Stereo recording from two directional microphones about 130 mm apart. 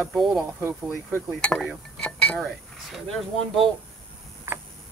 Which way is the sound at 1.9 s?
5° left (ahead or behind).